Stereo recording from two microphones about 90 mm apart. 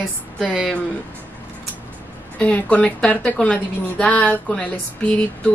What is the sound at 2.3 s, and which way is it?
Speech, 15° left (ahead or behind).